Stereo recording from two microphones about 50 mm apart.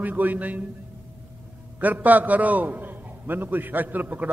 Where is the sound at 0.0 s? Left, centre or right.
Right.